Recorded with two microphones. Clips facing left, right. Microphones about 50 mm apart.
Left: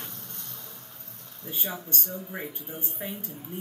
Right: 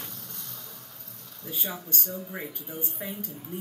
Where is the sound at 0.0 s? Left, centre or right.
Centre.